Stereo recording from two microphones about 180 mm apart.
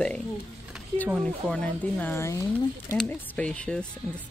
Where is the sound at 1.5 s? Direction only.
10° left (ahead or behind).